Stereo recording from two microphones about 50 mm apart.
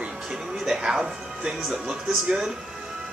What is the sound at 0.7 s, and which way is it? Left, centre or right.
Speech, centre.